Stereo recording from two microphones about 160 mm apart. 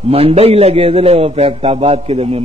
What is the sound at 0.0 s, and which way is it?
A man's voice, 35° right (ahead or behind).